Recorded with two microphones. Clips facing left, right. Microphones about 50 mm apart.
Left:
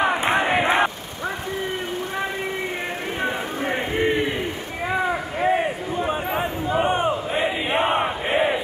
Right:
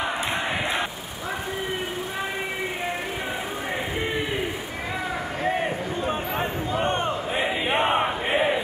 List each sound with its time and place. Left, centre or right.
0.0 s crowd: left
4.9 s a sound: centre
5.9 s chatter: centre
6.7 s crowd: centre
7.3 s battle cry: centre